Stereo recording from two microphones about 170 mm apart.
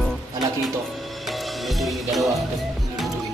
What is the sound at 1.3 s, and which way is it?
Music, centre (ahead or behind).